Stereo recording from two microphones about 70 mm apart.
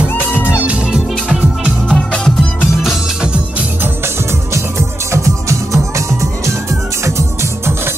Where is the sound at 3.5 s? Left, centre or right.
Right.